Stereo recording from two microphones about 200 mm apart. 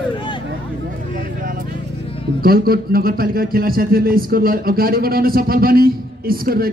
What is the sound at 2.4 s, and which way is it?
A man's voice, 50° right (ahead or behind).